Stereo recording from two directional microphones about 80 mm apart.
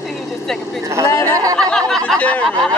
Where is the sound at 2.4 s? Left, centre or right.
Centre.